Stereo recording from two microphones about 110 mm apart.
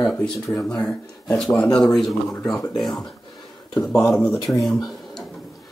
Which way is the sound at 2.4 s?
30° left (ahead or behind).